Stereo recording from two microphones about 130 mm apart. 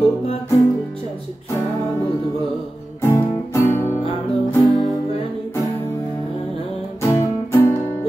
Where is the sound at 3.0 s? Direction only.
20° left (ahead or behind).